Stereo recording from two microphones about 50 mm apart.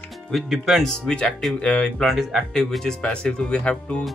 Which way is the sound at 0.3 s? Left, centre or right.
Centre.